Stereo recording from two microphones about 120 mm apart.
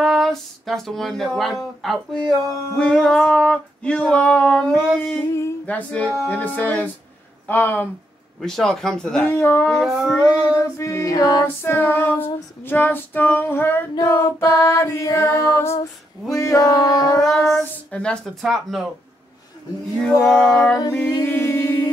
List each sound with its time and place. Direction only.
0.0 s speech: centre (ahead or behind)
2.3 s humming: 10° left (ahead or behind)
5.1 s female singing: 25° left (ahead or behind)
5.7 s humming: 10° left (ahead or behind)
8.4 s speech: 5° left (ahead or behind)
9.3 s female singing: 20° left (ahead or behind)
9.7 s speech: centre (ahead or behind)
10.6 s female singing: 25° left (ahead or behind)
11.4 s humming: 20° left (ahead or behind)
12.6 s female singing: 15° left (ahead or behind)
17.2 s speech: 5° left (ahead or behind)
20.0 s humming: 5° left (ahead or behind)
21.2 s a capella: 15° left (ahead or behind)